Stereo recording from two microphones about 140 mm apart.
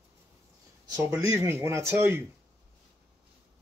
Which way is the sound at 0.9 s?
25° right (ahead or behind).